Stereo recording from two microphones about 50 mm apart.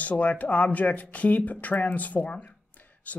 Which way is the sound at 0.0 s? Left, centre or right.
Left.